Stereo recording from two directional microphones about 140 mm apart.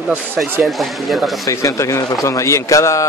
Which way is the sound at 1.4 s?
20° left (ahead or behind).